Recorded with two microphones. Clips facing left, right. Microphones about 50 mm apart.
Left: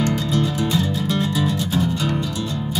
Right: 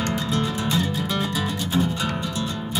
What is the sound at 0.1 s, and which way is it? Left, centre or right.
Music, centre.